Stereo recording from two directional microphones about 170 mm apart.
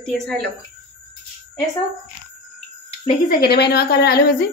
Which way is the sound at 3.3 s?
70° left (ahead or behind).